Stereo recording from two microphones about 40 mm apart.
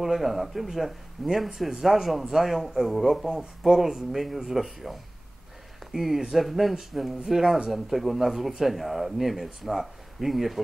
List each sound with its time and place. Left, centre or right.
0.0 s speech: centre
5.9 s speech: centre